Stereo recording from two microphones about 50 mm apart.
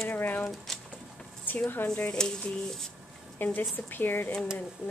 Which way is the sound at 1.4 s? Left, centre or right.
Left.